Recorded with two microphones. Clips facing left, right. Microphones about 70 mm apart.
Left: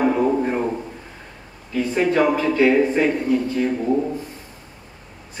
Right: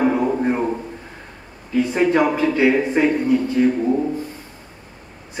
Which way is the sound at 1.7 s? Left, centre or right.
Centre.